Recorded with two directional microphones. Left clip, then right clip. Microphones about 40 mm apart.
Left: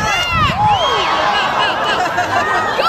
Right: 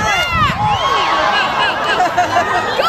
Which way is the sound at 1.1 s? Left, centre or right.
Centre.